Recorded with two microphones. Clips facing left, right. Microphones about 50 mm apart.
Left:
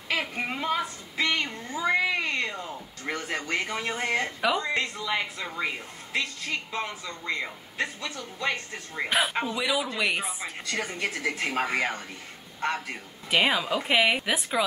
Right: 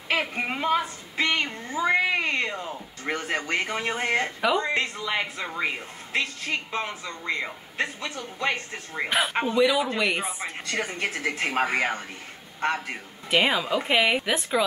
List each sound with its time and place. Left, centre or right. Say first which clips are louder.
0.1 s a woman's voice: right 3 dB; right
9.6 s speech: right 7 dB; centre
10.7 s a woman's voice: right 2 dB; right
13.3 s speech: right 1 dB; centre